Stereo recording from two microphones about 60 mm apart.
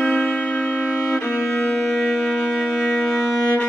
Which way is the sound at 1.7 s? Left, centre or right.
Centre.